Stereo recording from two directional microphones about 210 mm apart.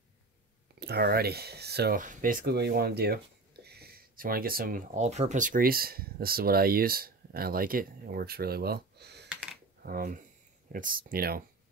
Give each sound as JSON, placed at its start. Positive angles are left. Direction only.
{"t": 0.7, "sound": "speech", "side_deg": -50}
{"t": 9.3, "sound": "computer keyboard", "side_deg": -5}
{"t": 9.8, "sound": "speech", "side_deg": -40}